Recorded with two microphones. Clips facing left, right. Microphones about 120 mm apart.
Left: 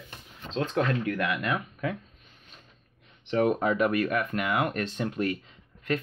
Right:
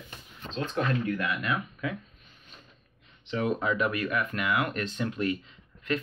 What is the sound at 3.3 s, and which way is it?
Speech, 50° left (ahead or behind).